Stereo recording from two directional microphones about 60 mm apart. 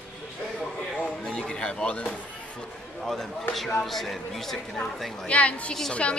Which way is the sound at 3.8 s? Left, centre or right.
Centre.